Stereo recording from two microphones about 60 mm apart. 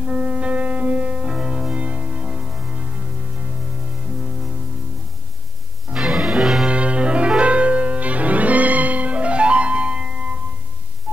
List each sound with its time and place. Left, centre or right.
0.0 s music: right
4.2 s music: centre
5.9 s music: centre
6.7 s music: centre